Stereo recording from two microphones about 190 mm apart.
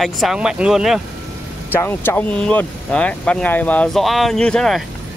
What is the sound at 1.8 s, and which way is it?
Speech, 10° left (ahead or behind).